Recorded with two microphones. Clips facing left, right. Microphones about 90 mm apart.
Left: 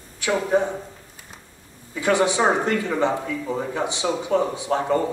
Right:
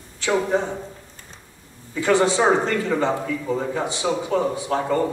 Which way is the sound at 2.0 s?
15° left (ahead or behind).